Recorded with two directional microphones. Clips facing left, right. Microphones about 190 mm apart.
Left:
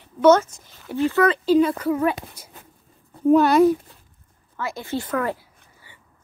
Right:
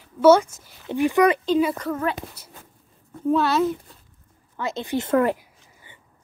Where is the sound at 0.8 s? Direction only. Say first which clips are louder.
Right 1 dB; 15° right (ahead or behind).